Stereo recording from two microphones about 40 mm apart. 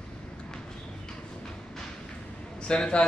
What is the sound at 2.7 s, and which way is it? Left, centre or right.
Speech, left.